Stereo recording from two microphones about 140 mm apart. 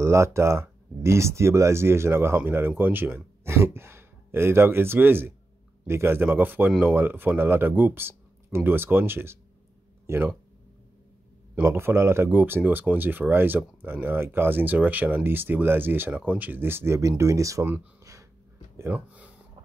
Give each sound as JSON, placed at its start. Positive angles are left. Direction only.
{"t": 0.0, "sound": "speech", "side_deg": -20}
{"t": 11.5, "sound": "speech", "side_deg": -15}
{"t": 18.8, "sound": "speech", "side_deg": -15}